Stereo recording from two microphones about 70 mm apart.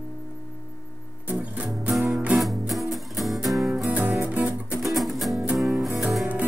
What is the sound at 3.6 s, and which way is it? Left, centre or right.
Music, centre.